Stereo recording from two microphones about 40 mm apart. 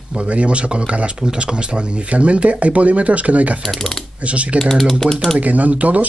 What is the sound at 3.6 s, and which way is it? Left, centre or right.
Speech, centre.